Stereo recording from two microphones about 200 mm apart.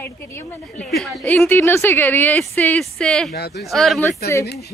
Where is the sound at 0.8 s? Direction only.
Centre (ahead or behind).